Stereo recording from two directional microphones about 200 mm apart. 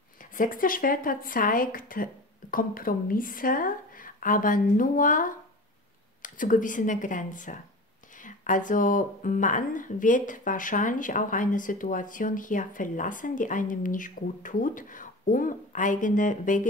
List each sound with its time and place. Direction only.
0.2 s speech: 40° left (ahead or behind)